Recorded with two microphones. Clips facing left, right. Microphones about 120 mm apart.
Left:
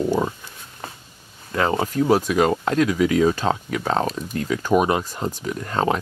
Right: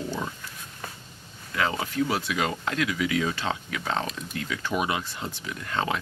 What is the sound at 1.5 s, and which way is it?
Speech, 40° left (ahead or behind).